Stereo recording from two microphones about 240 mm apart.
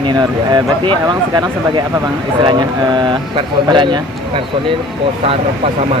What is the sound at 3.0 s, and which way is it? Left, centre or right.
Speech, centre.